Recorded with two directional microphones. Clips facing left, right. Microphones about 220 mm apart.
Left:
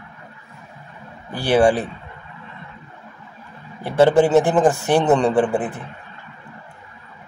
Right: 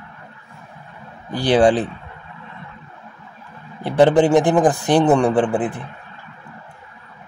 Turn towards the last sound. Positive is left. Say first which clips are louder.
# even
turn(degrees=-15)  # may be behind; listen again after turning